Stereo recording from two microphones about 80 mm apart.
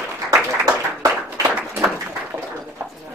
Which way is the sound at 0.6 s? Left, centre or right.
Right.